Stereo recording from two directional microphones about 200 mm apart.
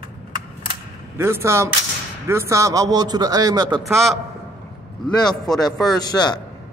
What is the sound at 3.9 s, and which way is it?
Speech, centre (ahead or behind).